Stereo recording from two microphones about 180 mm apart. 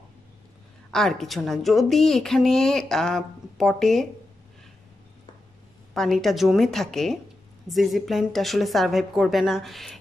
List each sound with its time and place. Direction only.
0.9 s a woman's voice: centre (ahead or behind)
5.9 s a woman's voice: centre (ahead or behind)